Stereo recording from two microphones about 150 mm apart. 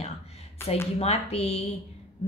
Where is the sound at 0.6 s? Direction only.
15° left (ahead or behind).